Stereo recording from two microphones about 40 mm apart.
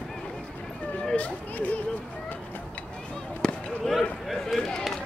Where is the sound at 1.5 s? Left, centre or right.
Left.